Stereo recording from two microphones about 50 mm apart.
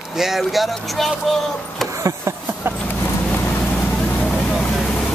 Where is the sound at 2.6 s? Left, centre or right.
Right.